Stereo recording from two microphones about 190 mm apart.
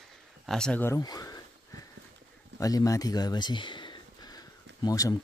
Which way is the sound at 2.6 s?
20° left (ahead or behind).